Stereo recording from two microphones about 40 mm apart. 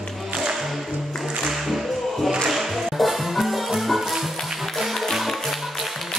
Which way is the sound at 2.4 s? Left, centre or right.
Centre.